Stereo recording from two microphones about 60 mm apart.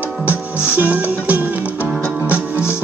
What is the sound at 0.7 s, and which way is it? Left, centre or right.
Music, right.